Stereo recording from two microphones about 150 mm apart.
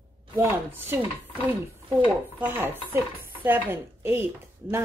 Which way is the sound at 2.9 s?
15° right (ahead or behind).